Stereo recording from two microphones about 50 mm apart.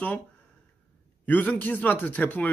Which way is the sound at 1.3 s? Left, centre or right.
Left.